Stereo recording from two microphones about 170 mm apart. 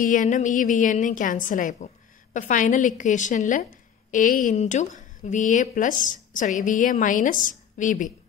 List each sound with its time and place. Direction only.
0.0 s a woman's voice: 50° left (ahead or behind)